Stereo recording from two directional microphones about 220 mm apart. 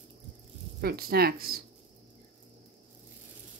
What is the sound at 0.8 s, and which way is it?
Speech, 45° right (ahead or behind).